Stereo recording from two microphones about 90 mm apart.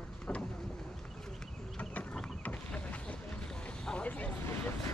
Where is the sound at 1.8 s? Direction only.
15° left (ahead or behind).